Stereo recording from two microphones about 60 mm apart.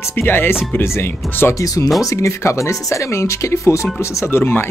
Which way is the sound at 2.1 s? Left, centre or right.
Left.